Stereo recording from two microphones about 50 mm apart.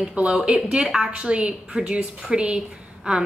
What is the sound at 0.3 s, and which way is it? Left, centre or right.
A woman's voice, centre.